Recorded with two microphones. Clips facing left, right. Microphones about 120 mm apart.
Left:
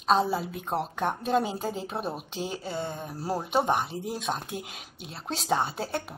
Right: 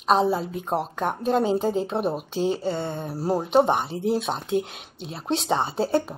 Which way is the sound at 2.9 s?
30° right (ahead or behind).